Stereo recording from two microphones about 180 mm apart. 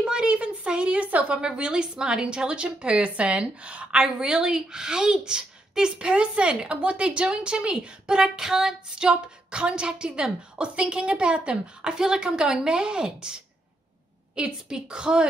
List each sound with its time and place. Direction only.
0.0 s a woman's voice: 5° right (ahead or behind)